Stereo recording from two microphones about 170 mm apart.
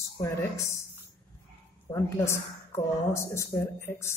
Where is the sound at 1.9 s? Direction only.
15° left (ahead or behind).